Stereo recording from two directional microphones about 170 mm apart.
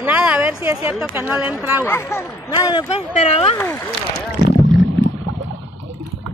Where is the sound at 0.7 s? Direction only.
20° right (ahead or behind).